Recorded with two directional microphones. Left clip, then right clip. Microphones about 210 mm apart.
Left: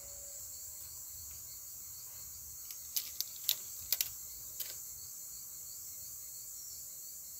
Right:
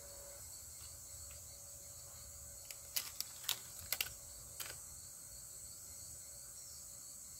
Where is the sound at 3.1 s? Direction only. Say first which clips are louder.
Left 4 dB; 5° right (ahead or behind).